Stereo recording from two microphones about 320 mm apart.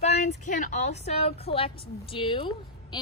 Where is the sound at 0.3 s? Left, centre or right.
Left.